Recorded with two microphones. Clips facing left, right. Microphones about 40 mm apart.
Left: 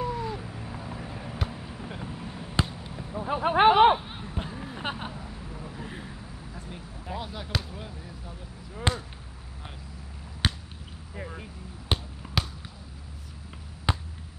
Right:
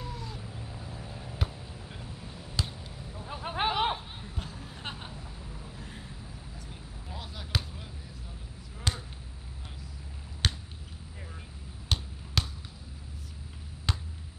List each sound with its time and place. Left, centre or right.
0.0 s cat: left
1.5 s basketball bounce: left
3.0 s a sound: left
7.2 s basketball bounce: centre
8.9 s a sound: left
10.4 s a sound: centre
11.1 s vehicle: left
11.9 s basketball bounce: left
13.9 s basketball bounce: left